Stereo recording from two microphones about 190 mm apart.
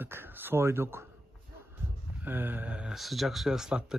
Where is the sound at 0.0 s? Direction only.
10° right (ahead or behind).